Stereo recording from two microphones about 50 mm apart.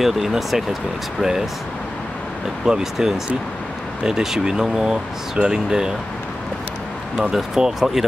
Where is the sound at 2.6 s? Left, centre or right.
Centre.